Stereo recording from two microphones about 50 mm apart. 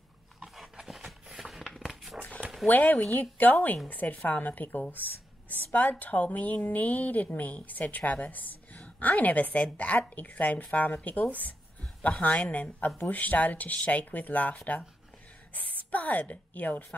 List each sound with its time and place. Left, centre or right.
0.7 s a sound: centre
1.8 s dog: centre
2.6 s a woman's voice: left